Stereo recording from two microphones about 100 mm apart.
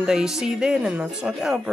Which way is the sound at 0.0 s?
5° right (ahead or behind).